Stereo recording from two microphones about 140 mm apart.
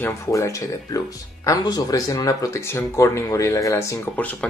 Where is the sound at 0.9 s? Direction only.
25° left (ahead or behind).